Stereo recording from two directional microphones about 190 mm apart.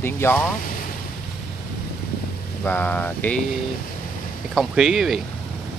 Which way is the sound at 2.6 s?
10° left (ahead or behind).